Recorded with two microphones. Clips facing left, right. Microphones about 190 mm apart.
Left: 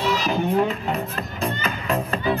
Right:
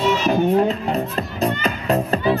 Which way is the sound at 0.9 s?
40° right (ahead or behind).